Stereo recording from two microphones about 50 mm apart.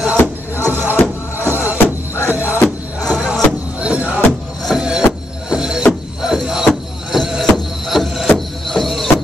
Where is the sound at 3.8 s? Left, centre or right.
Right.